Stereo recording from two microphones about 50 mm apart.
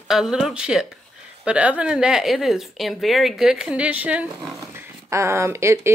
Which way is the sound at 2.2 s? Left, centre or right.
Centre.